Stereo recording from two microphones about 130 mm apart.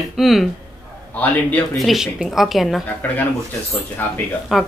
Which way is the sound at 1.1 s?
10° left (ahead or behind).